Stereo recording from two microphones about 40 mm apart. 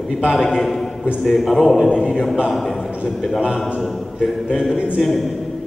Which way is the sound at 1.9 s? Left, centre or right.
Left.